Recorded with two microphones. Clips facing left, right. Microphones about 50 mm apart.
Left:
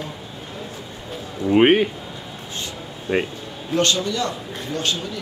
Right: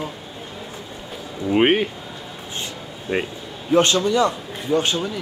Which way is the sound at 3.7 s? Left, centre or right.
Right.